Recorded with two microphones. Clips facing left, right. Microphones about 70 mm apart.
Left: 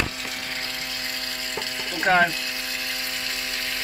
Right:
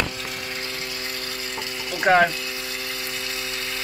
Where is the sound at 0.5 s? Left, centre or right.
Centre.